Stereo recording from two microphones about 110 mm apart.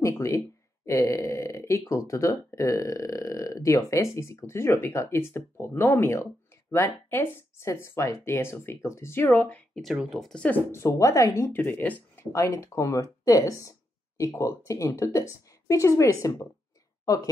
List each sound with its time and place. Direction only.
0.0 s speech: 30° left (ahead or behind)
9.8 s speech: centre (ahead or behind)
10.4 s speech: 20° left (ahead or behind)
12.3 s speech: 30° left (ahead or behind)